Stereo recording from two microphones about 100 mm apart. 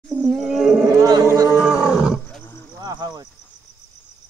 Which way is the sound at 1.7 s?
10° right (ahead or behind).